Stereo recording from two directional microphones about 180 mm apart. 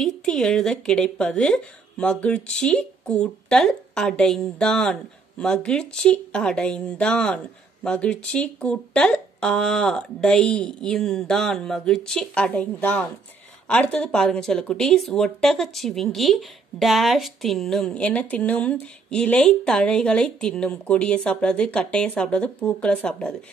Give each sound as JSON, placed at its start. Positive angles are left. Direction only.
{"t": 0.0, "sound": "speech", "side_deg": 5}